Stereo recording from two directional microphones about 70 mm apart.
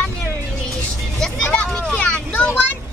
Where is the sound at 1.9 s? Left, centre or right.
Left.